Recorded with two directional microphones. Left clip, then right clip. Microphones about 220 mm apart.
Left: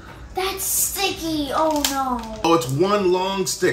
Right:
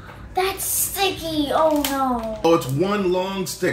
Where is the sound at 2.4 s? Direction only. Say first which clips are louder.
Left 1 dB; 15° left (ahead or behind).